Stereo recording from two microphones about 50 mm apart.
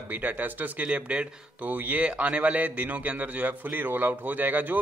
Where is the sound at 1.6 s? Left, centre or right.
Right.